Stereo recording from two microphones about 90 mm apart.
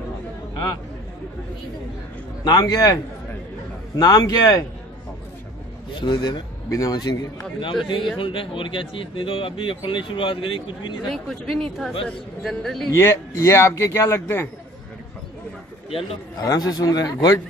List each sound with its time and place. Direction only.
2.4 s a man's voice: 50° left (ahead or behind)
5.9 s a man's voice: 55° left (ahead or behind)
6.7 s a man's voice: 40° left (ahead or behind)
7.8 s a man's voice: 65° left (ahead or behind)
11.1 s speech: 5° left (ahead or behind)
12.9 s a man's voice: 30° left (ahead or behind)
16.3 s a man's voice: 40° left (ahead or behind)